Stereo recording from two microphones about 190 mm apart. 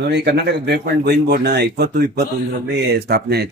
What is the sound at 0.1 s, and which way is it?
A man's voice, 60° right (ahead or behind).